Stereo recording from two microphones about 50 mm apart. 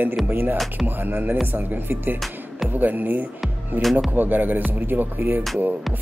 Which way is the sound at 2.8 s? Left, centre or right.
Right.